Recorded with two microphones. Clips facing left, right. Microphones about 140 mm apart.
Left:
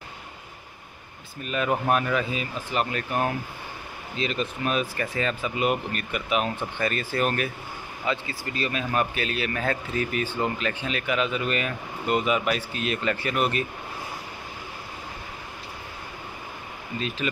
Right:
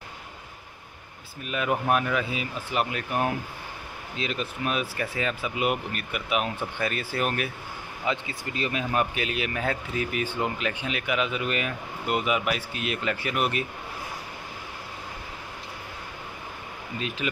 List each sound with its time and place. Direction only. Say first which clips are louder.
1.4 s speech: left 2 dB; 5° right (ahead or behind)
17.2 s speech: left 1 dB; 10° right (ahead or behind)